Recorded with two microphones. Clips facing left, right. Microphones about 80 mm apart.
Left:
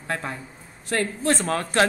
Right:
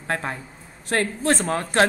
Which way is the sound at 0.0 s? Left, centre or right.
Right.